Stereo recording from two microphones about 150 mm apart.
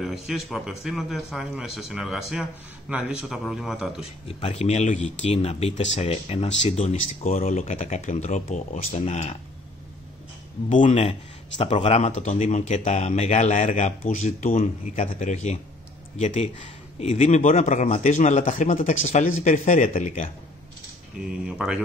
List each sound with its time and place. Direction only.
0.0 s speech: centre (ahead or behind)
4.0 s speech: 40° left (ahead or behind)
10.7 s speech: 55° left (ahead or behind)
21.2 s speech: 5° right (ahead or behind)